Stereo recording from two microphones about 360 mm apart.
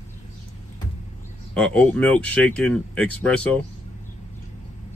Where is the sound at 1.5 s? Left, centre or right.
Centre.